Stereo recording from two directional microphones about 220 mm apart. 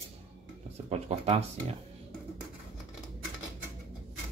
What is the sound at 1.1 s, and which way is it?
Speech, 30° right (ahead or behind).